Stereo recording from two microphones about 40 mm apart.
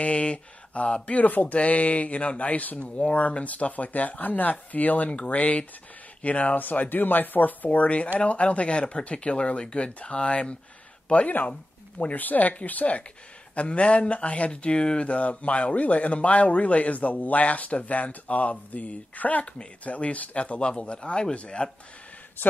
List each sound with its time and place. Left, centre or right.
0.0 s speech: left
6.6 s speech: left
13.6 s speech: left